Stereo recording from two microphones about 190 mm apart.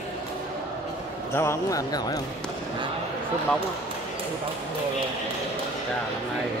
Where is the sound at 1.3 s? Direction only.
15° left (ahead or behind).